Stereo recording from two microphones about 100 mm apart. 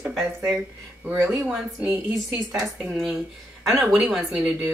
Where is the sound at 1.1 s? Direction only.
30° right (ahead or behind).